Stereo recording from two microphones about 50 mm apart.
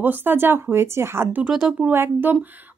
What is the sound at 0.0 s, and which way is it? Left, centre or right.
A woman's voice, right.